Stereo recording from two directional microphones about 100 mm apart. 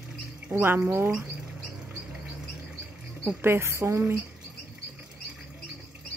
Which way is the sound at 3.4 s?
25° right (ahead or behind).